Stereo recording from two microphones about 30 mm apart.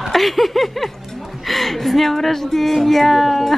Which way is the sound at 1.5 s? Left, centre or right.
Centre.